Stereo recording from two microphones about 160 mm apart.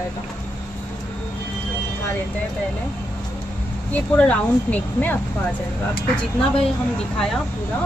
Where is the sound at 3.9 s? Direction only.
10° left (ahead or behind).